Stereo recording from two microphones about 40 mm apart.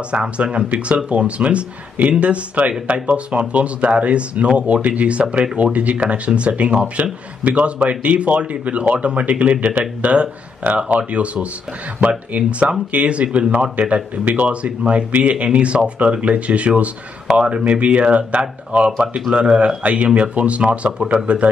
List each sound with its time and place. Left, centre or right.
0.1 s speech: right
12.3 s speech: right
20.8 s speech: right